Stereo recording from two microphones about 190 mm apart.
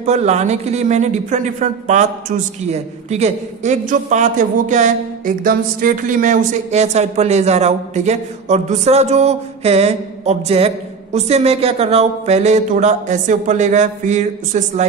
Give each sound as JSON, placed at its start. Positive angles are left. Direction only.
{"t": 0.0, "sound": "a woman's voice", "side_deg": -35}